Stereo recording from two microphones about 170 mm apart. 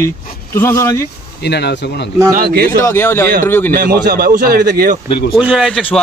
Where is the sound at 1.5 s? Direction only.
75° left (ahead or behind).